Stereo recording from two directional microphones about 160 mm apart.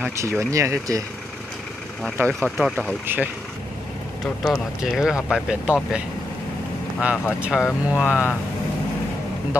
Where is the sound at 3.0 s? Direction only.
10° right (ahead or behind).